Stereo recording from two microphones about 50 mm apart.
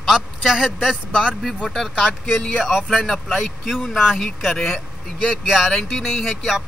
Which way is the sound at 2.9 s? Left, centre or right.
Centre.